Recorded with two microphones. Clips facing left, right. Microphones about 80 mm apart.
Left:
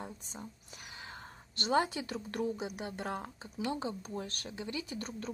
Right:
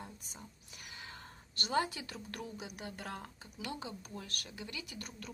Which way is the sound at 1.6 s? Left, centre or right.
Left.